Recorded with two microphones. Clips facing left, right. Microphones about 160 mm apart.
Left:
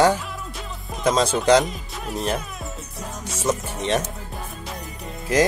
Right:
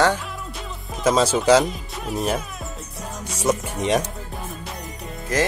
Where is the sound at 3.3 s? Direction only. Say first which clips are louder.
Right 2 dB; 10° right (ahead or behind).